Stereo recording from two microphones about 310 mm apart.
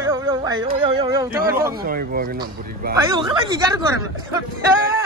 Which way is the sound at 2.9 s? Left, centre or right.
Centre.